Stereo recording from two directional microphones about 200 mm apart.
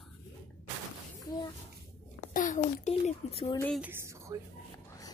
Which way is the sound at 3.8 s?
15° right (ahead or behind).